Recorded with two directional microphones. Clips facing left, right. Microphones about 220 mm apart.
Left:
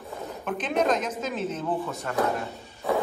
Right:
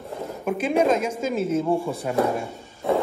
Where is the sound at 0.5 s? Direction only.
10° right (ahead or behind).